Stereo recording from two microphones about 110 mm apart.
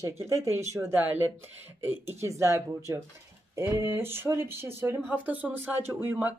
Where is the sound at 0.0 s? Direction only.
25° right (ahead or behind).